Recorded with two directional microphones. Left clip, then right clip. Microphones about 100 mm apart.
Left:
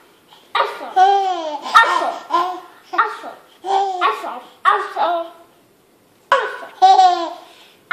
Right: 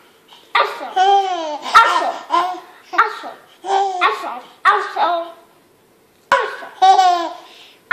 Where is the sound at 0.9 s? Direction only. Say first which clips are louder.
Even; 25° right (ahead or behind).